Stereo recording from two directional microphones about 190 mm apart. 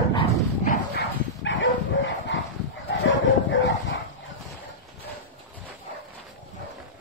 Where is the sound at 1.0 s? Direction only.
75° left (ahead or behind).